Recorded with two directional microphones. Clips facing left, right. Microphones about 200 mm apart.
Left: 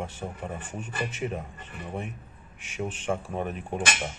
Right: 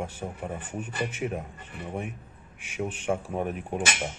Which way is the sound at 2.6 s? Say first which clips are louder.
Right 1 dB; 10° right (ahead or behind).